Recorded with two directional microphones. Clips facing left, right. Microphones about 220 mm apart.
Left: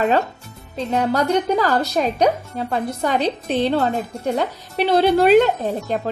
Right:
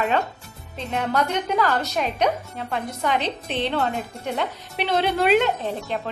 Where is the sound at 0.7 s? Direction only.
35° left (ahead or behind).